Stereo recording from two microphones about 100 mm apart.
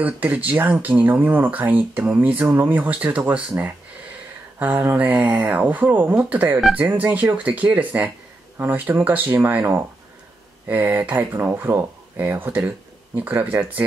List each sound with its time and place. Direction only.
0.0 s speech: 15° right (ahead or behind)
4.6 s speech: 20° right (ahead or behind)